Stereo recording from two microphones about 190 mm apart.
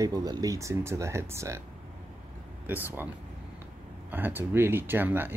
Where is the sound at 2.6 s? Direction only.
10° right (ahead or behind).